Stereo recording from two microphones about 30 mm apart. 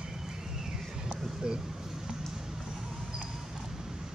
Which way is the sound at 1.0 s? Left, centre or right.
Right.